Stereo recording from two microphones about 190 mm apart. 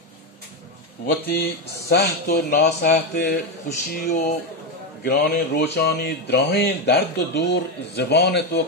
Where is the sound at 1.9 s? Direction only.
60° left (ahead or behind).